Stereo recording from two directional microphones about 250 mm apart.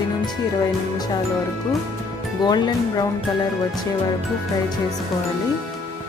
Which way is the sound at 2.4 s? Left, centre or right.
Centre.